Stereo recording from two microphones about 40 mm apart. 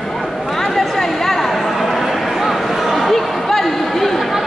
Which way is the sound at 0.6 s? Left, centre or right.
Centre.